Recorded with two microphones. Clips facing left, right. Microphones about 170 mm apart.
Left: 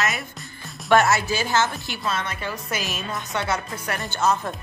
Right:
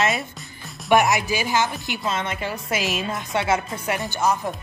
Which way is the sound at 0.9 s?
15° right (ahead or behind).